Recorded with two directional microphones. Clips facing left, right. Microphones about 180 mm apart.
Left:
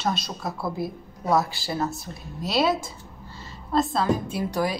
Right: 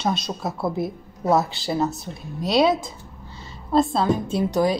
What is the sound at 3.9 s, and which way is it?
Speech, 25° right (ahead or behind).